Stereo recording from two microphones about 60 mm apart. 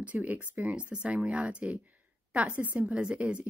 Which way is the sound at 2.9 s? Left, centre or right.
Centre.